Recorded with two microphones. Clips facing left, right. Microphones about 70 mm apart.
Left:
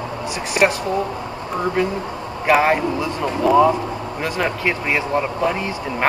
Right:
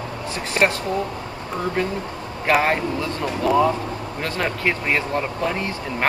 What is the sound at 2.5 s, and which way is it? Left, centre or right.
Speech, centre.